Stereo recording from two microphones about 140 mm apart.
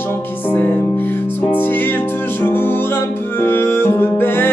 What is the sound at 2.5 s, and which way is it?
Music, 15° left (ahead or behind).